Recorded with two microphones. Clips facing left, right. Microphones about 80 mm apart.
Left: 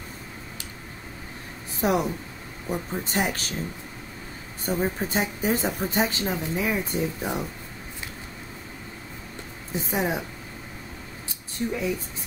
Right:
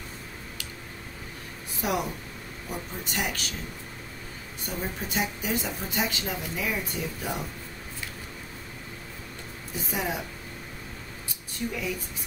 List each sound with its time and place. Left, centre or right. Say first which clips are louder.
1.8 s speech: left 5 dB; left
4.6 s speech: left 8 dB; left
9.8 s speech: left 4 dB; left
11.6 s speech: left 4 dB; left